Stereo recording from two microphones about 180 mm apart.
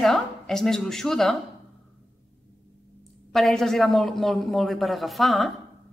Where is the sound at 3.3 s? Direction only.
Centre (ahead or behind).